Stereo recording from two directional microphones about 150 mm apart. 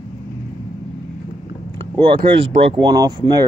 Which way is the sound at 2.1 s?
35° right (ahead or behind).